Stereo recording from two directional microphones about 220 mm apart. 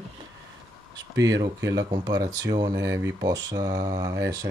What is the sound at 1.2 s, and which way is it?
Speech, 15° right (ahead or behind).